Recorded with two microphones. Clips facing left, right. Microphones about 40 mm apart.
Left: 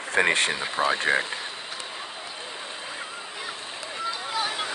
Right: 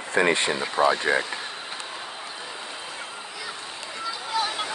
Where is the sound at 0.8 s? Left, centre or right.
Centre.